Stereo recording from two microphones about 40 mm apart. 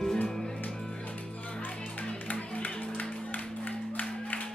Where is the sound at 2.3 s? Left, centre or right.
Left.